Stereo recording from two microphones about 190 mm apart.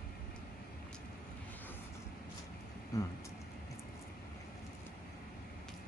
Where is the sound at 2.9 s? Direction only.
20° left (ahead or behind).